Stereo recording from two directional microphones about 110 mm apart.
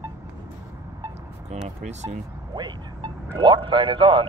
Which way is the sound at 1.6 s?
90° right.